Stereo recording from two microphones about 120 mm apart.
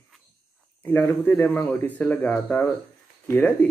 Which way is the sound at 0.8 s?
15° left (ahead or behind).